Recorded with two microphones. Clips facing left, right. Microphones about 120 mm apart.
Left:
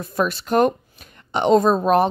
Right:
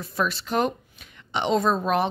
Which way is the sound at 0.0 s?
50° left (ahead or behind).